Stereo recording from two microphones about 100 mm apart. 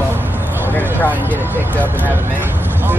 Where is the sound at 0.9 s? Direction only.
20° right (ahead or behind).